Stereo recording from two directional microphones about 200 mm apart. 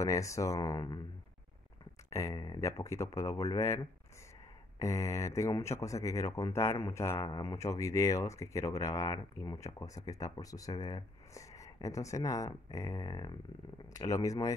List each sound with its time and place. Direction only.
0.0 s speech: 15° left (ahead or behind)
2.1 s speech: 15° left (ahead or behind)